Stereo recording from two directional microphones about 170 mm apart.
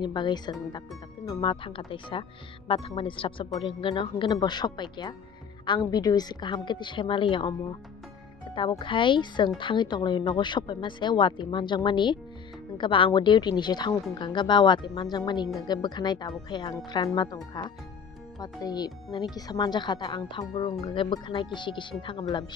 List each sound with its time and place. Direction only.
0.0 s speech: 25° left (ahead or behind)
8.5 s speech: 30° left (ahead or behind)
18.4 s speech: 20° left (ahead or behind)